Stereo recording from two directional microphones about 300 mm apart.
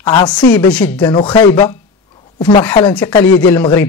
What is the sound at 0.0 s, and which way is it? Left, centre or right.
Speech, centre.